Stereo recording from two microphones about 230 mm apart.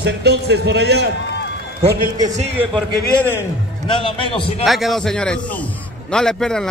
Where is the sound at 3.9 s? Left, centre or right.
Left.